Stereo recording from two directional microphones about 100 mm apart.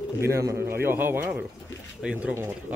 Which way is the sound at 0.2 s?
30° right (ahead or behind).